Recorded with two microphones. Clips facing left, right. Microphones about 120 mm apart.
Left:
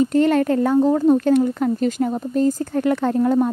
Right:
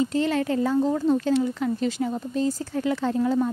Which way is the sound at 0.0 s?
55° left (ahead or behind).